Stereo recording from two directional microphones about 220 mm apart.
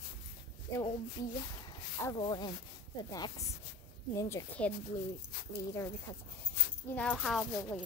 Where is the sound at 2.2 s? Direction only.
20° left (ahead or behind).